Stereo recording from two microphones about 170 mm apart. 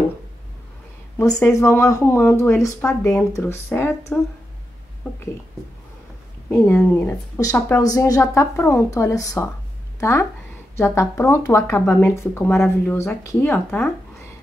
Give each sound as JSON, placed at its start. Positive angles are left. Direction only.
{"t": 1.1, "sound": "speech", "side_deg": 15}
{"t": 6.5, "sound": "speech", "side_deg": 15}